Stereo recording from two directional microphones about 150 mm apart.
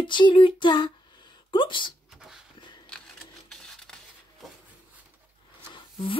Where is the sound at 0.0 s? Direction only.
30° left (ahead or behind).